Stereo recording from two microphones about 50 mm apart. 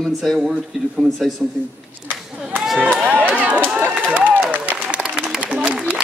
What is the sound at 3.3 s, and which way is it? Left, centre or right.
Run, right.